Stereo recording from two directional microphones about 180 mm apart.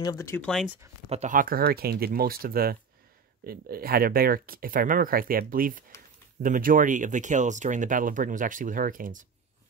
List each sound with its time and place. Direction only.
0.0 s speech: 20° left (ahead or behind)
0.5 s speech: centre (ahead or behind)
1.0 s speech: 40° right (ahead or behind)